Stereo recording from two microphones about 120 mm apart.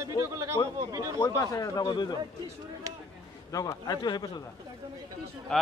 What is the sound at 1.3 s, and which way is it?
Speech, 30° left (ahead or behind).